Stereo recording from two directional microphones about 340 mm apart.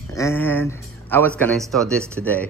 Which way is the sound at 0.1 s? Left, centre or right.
Centre.